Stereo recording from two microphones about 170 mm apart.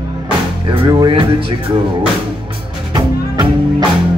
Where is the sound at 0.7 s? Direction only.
25° right (ahead or behind).